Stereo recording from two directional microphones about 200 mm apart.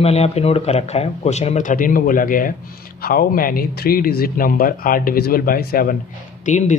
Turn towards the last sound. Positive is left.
turn(degrees=35)  # may be behind; listen again after turning